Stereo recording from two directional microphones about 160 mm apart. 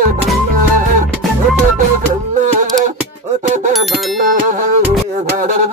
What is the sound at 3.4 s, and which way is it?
Bicycle bell, 55° right (ahead or behind).